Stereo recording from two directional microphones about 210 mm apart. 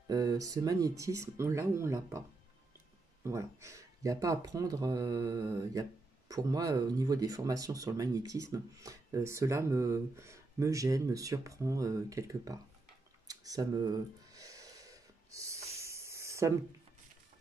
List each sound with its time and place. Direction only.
0.1 s speech: 15° right (ahead or behind)
3.3 s speech: 15° right (ahead or behind)
13.3 s a sound: 15° right (ahead or behind)
15.7 s spray: 15° right (ahead or behind)